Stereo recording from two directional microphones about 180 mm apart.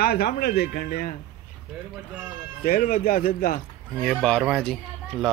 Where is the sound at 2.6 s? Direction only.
50° left (ahead or behind).